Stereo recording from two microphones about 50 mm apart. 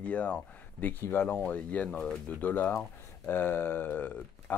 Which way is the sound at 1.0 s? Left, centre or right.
Left.